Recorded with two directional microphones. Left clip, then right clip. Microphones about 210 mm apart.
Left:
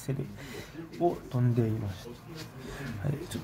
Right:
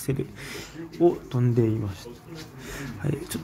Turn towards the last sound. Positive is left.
turn(degrees=-15)  # may be behind; listen again after turning